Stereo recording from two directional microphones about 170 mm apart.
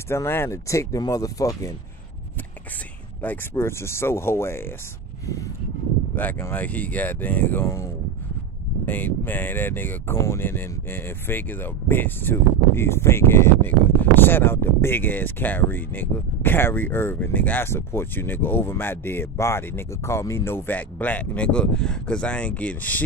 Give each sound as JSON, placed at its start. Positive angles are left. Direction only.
{"t": 0.1, "sound": "speech", "side_deg": 15}
{"t": 3.2, "sound": "speech", "side_deg": 10}
{"t": 5.2, "sound": "a sound", "side_deg": 20}
{"t": 6.1, "sound": "speech", "side_deg": 10}